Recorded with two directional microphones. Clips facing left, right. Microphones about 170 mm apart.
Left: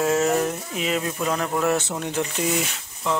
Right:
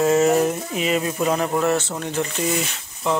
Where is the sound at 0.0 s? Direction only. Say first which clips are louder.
Right 4 dB; 5° right (ahead or behind).